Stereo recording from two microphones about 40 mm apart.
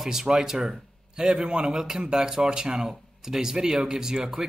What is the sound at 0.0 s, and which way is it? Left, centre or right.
A man's voice, centre.